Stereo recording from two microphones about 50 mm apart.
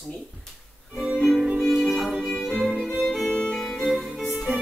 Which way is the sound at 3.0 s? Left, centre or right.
Centre.